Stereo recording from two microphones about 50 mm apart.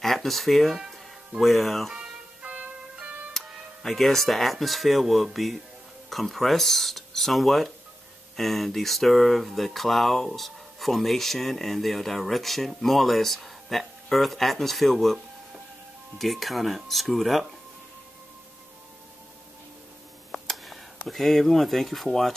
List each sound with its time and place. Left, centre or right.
0.0 s speech: centre
2.4 s music: right
3.8 s speech: centre
16.2 s speech: centre
20.2 s a sound: centre
21.1 s speech: centre